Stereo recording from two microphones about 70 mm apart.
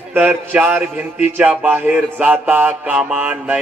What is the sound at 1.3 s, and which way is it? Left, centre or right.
Mantra, right.